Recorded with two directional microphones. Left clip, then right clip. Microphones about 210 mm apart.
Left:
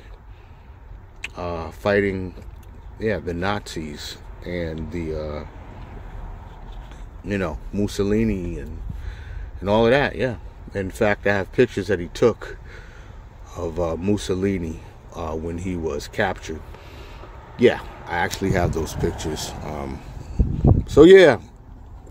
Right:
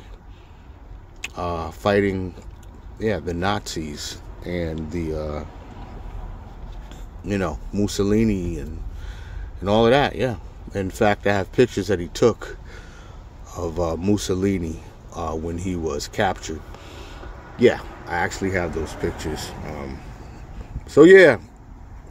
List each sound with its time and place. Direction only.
1.2 s speech: 5° right (ahead or behind)
6.9 s a man's voice: centre (ahead or behind)
18.5 s speech: 20° left (ahead or behind)